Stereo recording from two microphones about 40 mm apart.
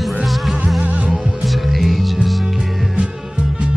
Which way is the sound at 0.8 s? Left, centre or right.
Right.